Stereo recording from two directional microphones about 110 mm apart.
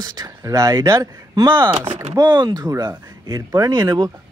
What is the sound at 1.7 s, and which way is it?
Speech, 75° right (ahead or behind).